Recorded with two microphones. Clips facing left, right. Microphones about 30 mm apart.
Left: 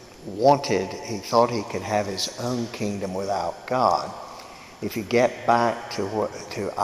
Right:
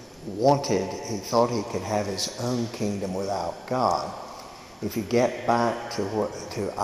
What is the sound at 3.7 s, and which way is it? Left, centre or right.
A man's voice, left.